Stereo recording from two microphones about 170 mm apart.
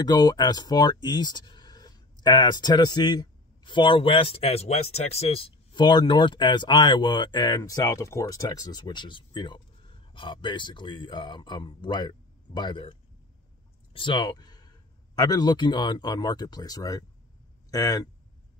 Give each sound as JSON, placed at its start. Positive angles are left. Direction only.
{"t": 0.0, "sound": "speech", "side_deg": 25}
{"t": 13.9, "sound": "speech", "side_deg": 30}